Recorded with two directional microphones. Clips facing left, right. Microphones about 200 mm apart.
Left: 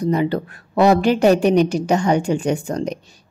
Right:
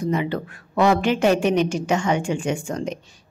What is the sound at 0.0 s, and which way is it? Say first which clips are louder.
A woman's voice: left 4 dB; 35° left (ahead or behind).